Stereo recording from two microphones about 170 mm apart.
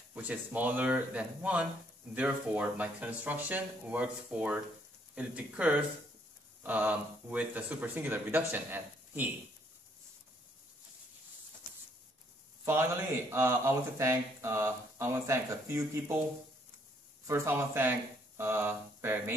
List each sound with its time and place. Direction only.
0.1 s speech: 10° right (ahead or behind)
12.6 s speech: 15° right (ahead or behind)
17.3 s speech: 15° right (ahead or behind)